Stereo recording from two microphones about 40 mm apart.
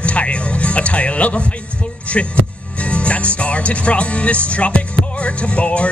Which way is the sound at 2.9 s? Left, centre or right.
Left.